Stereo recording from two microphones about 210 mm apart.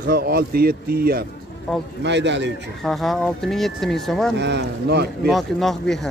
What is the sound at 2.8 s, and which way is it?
Speech, centre (ahead or behind).